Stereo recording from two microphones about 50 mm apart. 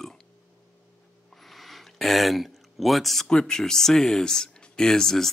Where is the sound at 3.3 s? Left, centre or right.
Centre.